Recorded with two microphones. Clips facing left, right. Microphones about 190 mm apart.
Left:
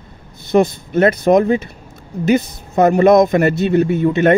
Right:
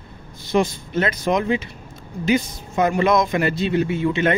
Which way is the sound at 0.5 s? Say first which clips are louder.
Left 6 dB; 50° left (ahead or behind).